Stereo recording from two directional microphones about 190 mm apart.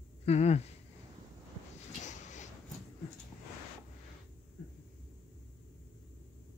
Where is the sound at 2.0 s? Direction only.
40° left (ahead or behind).